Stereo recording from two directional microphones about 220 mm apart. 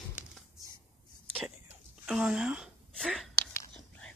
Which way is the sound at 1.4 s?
Centre (ahead or behind).